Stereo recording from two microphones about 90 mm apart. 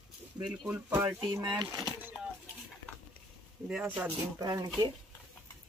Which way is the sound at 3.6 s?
5° right (ahead or behind).